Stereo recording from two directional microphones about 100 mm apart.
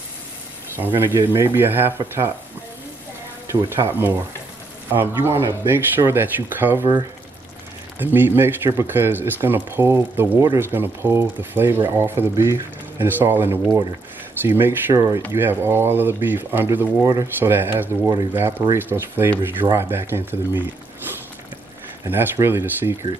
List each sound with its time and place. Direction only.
0.7 s speech: 20° right (ahead or behind)
3.6 s speech: 25° right (ahead or behind)
8.0 s speech: 20° right (ahead or behind)
17.0 s speech: 35° right (ahead or behind)
17.4 s speech: 20° right (ahead or behind)
22.0 s speech: 20° right (ahead or behind)